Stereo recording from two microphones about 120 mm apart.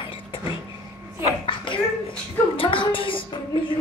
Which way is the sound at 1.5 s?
45° left (ahead or behind).